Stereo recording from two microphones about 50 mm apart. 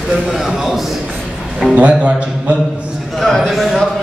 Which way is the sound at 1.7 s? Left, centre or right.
Right.